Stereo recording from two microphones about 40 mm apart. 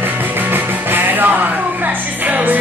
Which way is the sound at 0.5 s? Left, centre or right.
Right.